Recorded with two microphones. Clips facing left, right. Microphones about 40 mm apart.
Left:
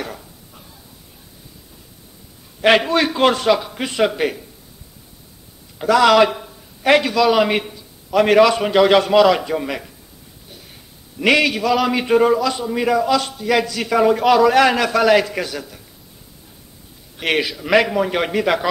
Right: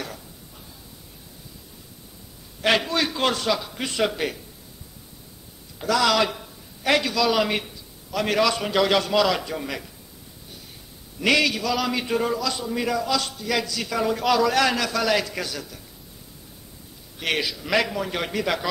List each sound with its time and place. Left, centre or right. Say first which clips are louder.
2.6 s a man's voice: left 7 dB; left
5.8 s a man's voice: left 8 dB; left
7.6 s a man's voice: left 6 dB; left
11.1 s a man's voice: left 5 dB; left
17.2 s a man's voice: left 6 dB; left